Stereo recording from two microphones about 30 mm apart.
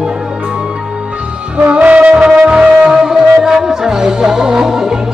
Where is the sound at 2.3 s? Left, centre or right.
Right.